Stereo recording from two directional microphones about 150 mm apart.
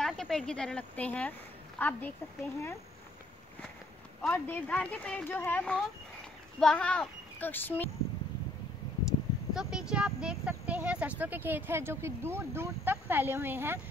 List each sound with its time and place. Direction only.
0.0 s speech: centre (ahead or behind)
4.2 s speech: 10° left (ahead or behind)
9.5 s speech: 5° right (ahead or behind)